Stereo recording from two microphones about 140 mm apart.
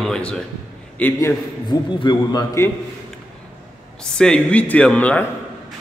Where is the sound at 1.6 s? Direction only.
35° left (ahead or behind).